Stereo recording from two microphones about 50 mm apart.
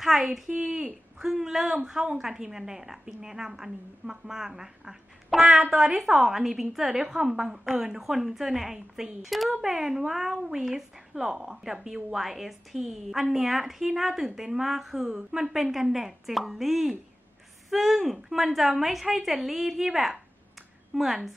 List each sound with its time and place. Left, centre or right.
0.0 s a woman's voice: centre